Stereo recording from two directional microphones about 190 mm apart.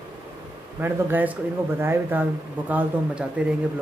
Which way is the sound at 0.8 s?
10° right (ahead or behind).